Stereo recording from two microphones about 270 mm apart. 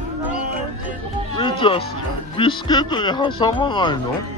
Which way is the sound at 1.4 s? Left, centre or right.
Centre.